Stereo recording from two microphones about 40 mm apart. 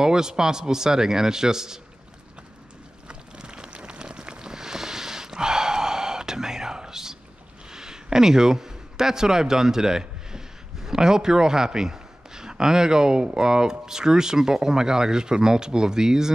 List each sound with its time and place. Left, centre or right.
0.0 s a man's voice: centre
3.1 s a sound: right
7.7 s a man's voice: centre